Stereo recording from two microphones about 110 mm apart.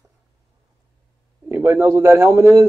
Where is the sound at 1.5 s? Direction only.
20° right (ahead or behind).